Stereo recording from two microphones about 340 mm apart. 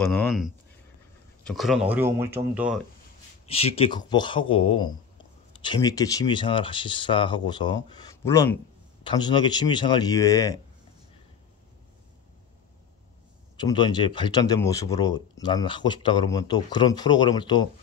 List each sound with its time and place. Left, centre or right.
0.0 s speech: centre
3.4 s speech: centre
13.6 s speech: centre